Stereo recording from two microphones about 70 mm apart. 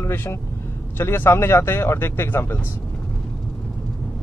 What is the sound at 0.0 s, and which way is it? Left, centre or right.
Speech, left.